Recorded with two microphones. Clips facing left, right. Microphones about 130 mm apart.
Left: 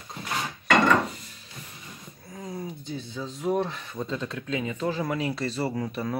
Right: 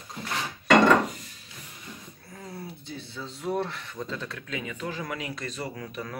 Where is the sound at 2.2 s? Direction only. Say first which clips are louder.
Left 5 dB; 15° left (ahead or behind).